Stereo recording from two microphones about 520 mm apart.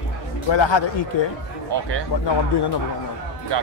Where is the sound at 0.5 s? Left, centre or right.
Left.